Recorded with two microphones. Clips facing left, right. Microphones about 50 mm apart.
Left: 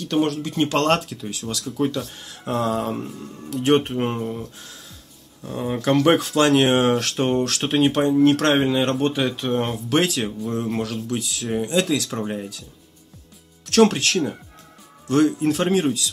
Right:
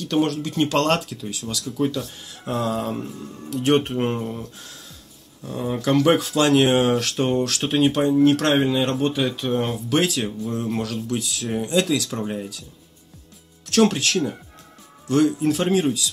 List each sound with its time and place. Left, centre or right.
0.1 s speech: centre; by 1.0 s left
1.4 s speech: left
3.1 s speech: centre
3.4 s speech: centre
3.9 s speech: centre
5.5 s speech: left
10.6 s speech: centre
13.7 s speech: left
15.0 s speech: left